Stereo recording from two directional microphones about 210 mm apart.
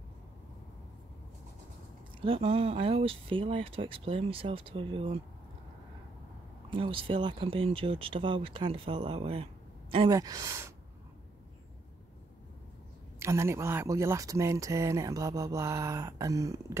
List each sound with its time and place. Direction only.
2.1 s speech: 25° right (ahead or behind)
6.7 s speech: 25° right (ahead or behind)
13.2 s speech: 15° right (ahead or behind)